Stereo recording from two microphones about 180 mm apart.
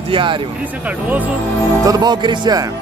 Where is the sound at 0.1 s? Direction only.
30° right (ahead or behind).